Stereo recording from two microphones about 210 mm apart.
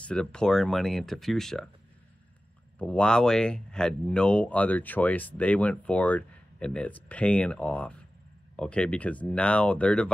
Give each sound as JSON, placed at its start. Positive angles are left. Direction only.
{"t": 0.0, "sound": "speech", "side_deg": 5}
{"t": 2.8, "sound": "speech", "side_deg": 5}